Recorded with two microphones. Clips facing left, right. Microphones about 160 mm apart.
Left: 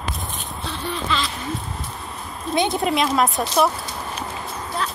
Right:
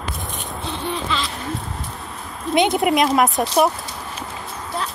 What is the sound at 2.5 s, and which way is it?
Speech, 20° right (ahead or behind).